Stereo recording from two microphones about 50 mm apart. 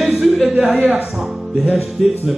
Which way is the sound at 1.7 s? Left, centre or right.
Centre.